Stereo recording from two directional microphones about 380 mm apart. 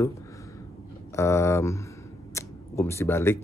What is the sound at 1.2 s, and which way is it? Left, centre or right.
Speech, centre.